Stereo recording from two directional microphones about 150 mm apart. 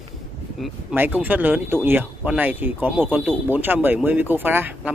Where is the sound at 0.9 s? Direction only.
10° right (ahead or behind).